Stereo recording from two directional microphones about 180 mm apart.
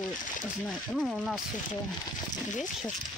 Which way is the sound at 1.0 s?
Centre (ahead or behind).